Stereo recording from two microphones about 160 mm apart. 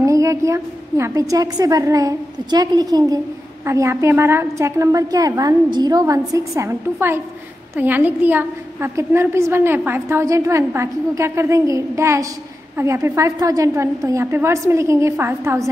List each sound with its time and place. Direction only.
0.0 s a woman's voice: 20° right (ahead or behind)